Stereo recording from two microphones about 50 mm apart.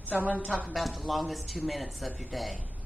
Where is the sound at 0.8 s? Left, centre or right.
Centre.